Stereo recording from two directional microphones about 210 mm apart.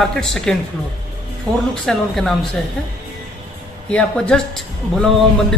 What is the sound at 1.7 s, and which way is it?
Speech, centre (ahead or behind).